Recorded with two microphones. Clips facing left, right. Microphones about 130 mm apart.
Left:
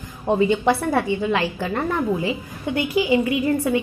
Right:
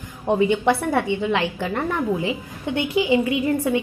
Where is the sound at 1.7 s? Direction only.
10° left (ahead or behind).